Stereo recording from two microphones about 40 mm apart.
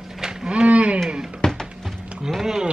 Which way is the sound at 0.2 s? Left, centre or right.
Centre.